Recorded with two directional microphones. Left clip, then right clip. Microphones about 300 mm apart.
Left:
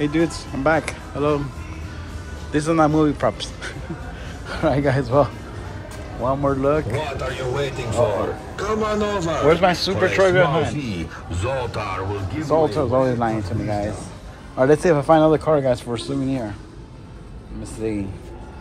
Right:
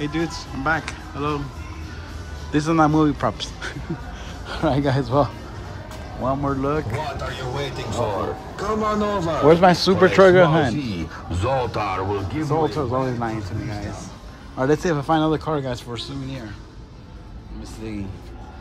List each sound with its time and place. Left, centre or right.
0.0 s speech: centre
2.5 s speech: centre
8.1 s a man's voice: centre
12.4 s speech: centre
17.8 s speech: centre